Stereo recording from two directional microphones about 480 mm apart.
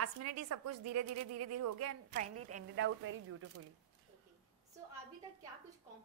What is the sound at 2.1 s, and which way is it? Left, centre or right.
A woman's voice, centre.